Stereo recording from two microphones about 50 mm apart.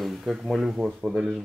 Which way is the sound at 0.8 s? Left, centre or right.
Centre.